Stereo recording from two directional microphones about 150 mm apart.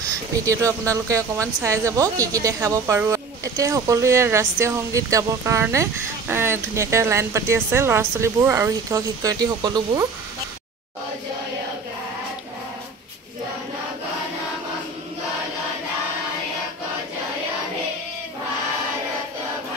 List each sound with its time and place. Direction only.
0.5 s speech: 20° right (ahead or behind)